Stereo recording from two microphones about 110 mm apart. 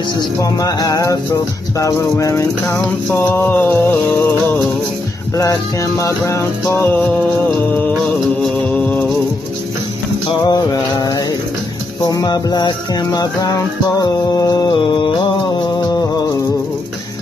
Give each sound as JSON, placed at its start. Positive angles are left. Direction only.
{"t": 0.4, "sound": "music", "side_deg": 35}
{"t": 5.3, "sound": "music", "side_deg": 30}
{"t": 8.4, "sound": "music", "side_deg": 10}
{"t": 10.4, "sound": "music", "side_deg": 35}
{"t": 14.8, "sound": "a sound", "side_deg": 50}